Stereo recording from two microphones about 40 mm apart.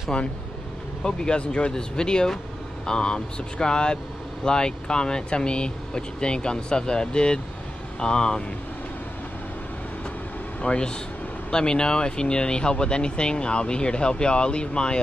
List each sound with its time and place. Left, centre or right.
0.1 s speech: left
10.6 s speech: left